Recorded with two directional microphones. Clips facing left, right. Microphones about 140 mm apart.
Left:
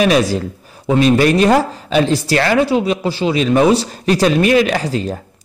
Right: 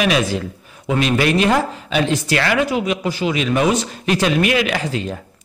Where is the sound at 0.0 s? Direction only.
35° left (ahead or behind).